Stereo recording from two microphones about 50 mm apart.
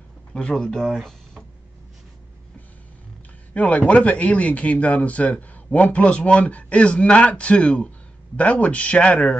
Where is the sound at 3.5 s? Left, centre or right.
Left.